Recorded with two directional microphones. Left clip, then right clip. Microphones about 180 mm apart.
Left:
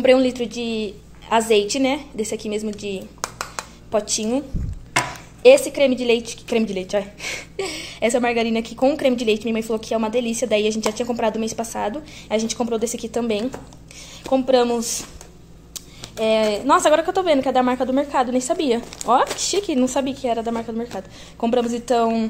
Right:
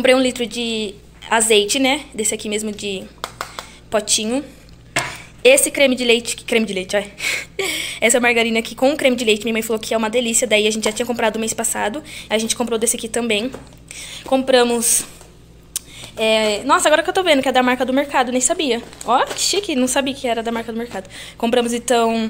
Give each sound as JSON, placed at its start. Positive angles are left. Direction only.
{"t": 0.0, "sound": "a woman's voice", "side_deg": 5}
{"t": 3.2, "sound": "a sound", "side_deg": 35}
{"t": 3.9, "sound": "a woman's voice", "side_deg": 5}
{"t": 15.7, "sound": "computer keyboard", "side_deg": 0}
{"t": 16.6, "sound": "a woman's voice", "side_deg": 15}
{"t": 17.0, "sound": "a woman's voice", "side_deg": 0}
{"t": 18.6, "sound": "a woman's voice", "side_deg": 15}
{"t": 19.8, "sound": "a woman's voice", "side_deg": 0}